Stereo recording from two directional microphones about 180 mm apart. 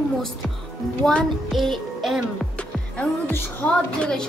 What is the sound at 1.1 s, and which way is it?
Music, centre (ahead or behind).